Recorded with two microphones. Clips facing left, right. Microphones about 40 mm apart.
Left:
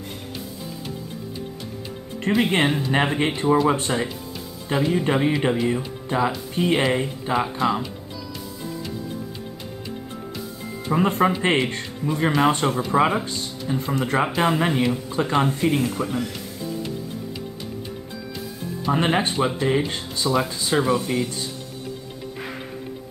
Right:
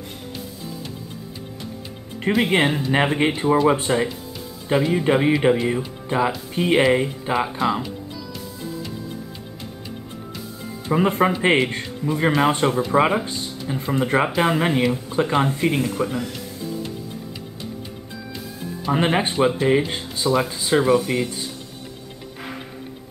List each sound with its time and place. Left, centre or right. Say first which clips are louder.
2.3 s speech: right 1 dB; centre
10.9 s speech: right 1 dB; centre
15.4 s speech: even; right
18.9 s speech: right 1 dB; centre
20.9 s speech: right 3 dB; right